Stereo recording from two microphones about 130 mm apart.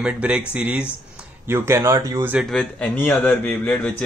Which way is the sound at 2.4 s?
5° left (ahead or behind).